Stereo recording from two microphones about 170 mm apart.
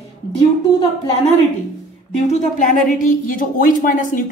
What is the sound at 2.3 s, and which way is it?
A woman's voice, 50° left (ahead or behind).